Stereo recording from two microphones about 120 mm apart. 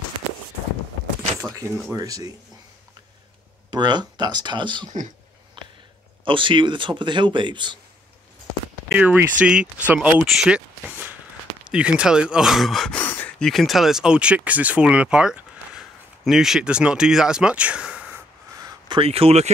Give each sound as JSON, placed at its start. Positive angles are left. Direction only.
{"t": 1.4, "sound": "speech", "side_deg": -25}
{"t": 3.7, "sound": "a man's voice", "side_deg": -35}
{"t": 5.6, "sound": "a sound", "side_deg": -40}
{"t": 6.2, "sound": "a man's voice", "side_deg": -45}
{"t": 8.8, "sound": "speech", "side_deg": -10}
{"t": 12.9, "sound": "gasp", "side_deg": 15}
{"t": 13.4, "sound": "speech", "side_deg": 0}
{"t": 18.9, "sound": "speech", "side_deg": -55}